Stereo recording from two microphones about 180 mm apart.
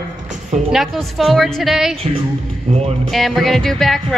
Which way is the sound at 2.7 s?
35° right (ahead or behind).